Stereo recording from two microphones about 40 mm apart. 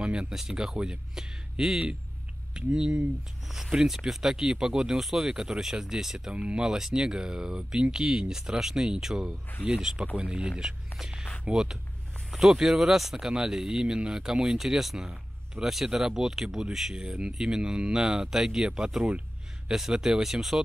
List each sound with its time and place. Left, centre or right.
0.0 s a sound: right
0.3 s speech: centre
3.8 s speech: centre
6.3 s speech: right
6.6 s speech: centre
10.5 s speech: centre
16.9 s speech: right
19.7 s speech: centre